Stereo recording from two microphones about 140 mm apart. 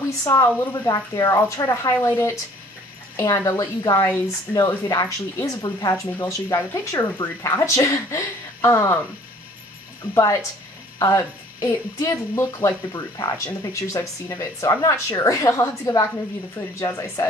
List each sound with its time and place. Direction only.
0.2 s a woman's voice: 25° left (ahead or behind)
11.0 s a woman's voice: 20° left (ahead or behind)